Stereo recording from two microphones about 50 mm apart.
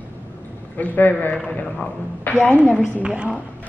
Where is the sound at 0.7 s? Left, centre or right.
Left.